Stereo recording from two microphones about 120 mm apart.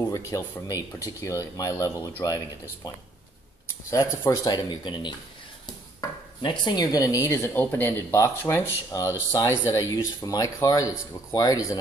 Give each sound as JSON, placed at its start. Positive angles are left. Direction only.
{"t": 0.1, "sound": "speech", "side_deg": 30}
{"t": 3.9, "sound": "speech", "side_deg": 25}
{"t": 4.6, "sound": "speech", "side_deg": 40}
{"t": 6.4, "sound": "speech", "side_deg": 35}